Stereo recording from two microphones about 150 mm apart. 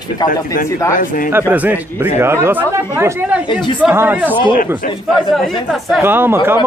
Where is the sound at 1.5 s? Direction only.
10° right (ahead or behind).